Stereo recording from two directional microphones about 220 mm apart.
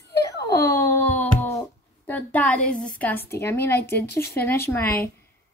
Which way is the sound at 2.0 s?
5° left (ahead or behind).